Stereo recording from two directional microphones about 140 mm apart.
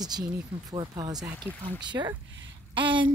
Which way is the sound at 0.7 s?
25° right (ahead or behind).